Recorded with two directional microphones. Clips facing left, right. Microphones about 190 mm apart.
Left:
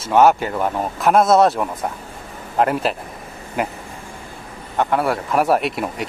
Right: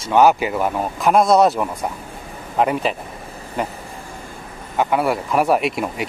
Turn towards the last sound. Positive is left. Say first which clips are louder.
# right 1 dB
turn(degrees=0)  # may be behind; listen again after turning